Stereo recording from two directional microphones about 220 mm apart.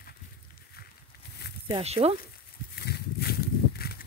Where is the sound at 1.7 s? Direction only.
30° right (ahead or behind).